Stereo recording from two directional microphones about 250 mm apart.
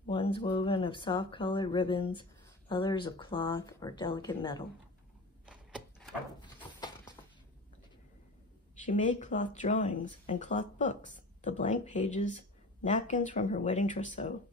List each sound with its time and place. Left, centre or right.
0.1 s speech: left
8.8 s speech: left